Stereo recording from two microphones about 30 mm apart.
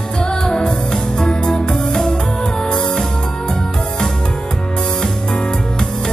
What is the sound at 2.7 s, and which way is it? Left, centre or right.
Music, left.